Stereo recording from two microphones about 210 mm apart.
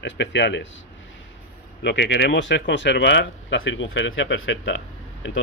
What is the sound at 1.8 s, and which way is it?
Speech, 55° left (ahead or behind).